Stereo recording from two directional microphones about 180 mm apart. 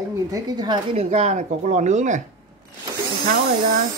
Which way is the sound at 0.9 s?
40° right (ahead or behind).